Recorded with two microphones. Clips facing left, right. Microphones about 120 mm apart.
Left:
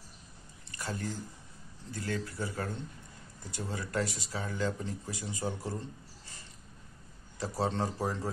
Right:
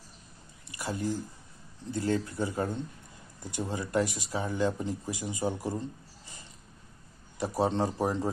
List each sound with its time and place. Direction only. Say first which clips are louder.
0.7 s a sound: right 5 dB; 15° right (ahead or behind)
1.9 s speech: right 7 dB; 25° right (ahead or behind)
7.3 s speech: right 4 dB; 15° right (ahead or behind)